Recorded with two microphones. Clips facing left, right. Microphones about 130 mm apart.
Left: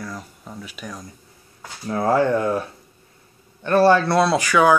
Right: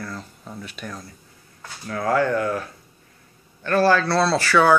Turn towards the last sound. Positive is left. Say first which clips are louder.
# left 1 dB
turn(degrees=10)  # may be behind; listen again after turning